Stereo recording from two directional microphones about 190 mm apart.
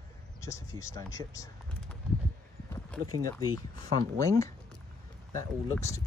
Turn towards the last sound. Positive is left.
turn(degrees=15)  # may be behind; listen again after turning